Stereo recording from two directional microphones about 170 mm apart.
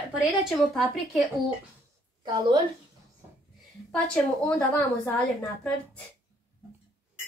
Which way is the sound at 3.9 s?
5° left (ahead or behind).